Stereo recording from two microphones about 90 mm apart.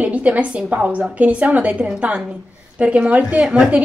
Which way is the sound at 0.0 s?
15° right (ahead or behind).